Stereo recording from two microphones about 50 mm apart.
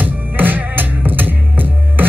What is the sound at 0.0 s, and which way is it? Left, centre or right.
Music, right.